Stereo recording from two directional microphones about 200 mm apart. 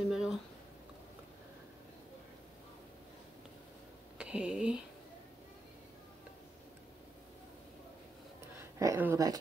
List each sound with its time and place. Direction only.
0.1 s a sound: centre (ahead or behind)
4.2 s speech: 5° right (ahead or behind)
8.7 s speech: 15° right (ahead or behind)